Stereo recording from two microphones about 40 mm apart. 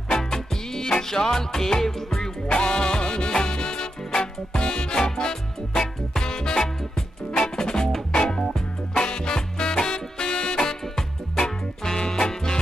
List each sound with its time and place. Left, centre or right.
0.1 s music: centre
2.5 s music: left